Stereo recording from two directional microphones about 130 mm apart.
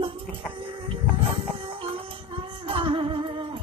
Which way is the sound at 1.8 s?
45° right (ahead or behind).